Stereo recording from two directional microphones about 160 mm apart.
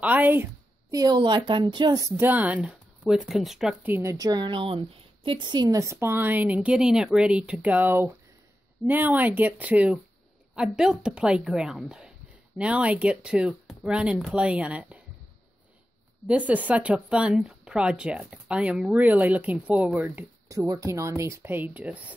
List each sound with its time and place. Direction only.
0.0 s speech: 10° right (ahead or behind)
0.9 s a woman's voice: 25° right (ahead or behind); by 3.9 s 5° right (ahead or behind)
3.9 s a woman's voice: 20° right (ahead or behind)
16.3 s speech: 10° right (ahead or behind)